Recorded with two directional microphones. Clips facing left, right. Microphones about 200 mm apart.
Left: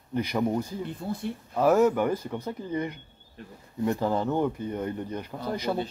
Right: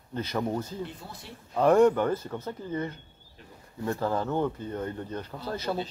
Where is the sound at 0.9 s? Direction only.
50° left (ahead or behind).